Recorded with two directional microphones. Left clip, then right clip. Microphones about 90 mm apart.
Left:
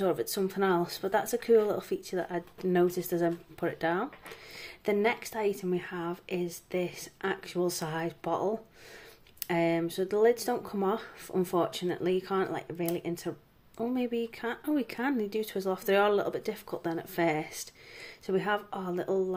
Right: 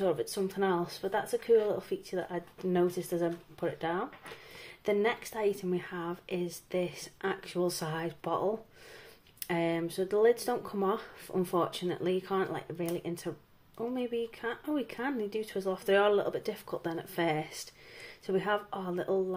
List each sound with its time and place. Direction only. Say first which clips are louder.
0.0 s speech: left 1 dB; 55° left (ahead or behind)
4.6 s a woman's voice: left 1 dB; 45° left (ahead or behind)
13.7 s a woman's voice: left 2 dB; 45° left (ahead or behind); by 19.2 s 30° left (ahead or behind)